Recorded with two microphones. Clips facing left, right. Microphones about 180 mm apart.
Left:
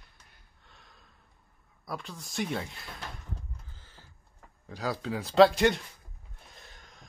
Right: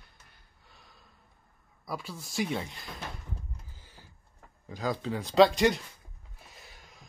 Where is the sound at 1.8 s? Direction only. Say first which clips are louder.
Right 1 dB; 5° right (ahead or behind).